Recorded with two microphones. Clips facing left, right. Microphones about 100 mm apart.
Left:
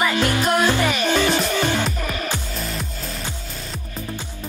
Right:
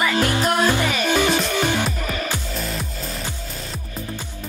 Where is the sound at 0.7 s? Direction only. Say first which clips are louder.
Left 1 dB; 15° right (ahead or behind).